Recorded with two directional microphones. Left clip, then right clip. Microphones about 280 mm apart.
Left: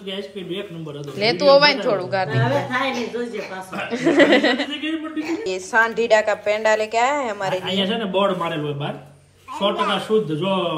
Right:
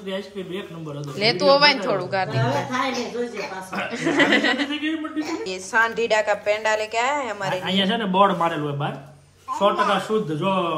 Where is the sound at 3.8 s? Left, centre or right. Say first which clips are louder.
Left 4 dB; centre.